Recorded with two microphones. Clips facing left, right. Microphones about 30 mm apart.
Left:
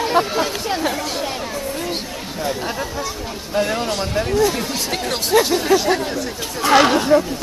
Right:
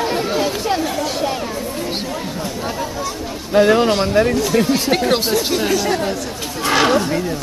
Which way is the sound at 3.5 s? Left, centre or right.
Right.